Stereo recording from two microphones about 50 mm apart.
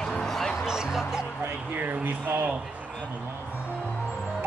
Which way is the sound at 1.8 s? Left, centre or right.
Right.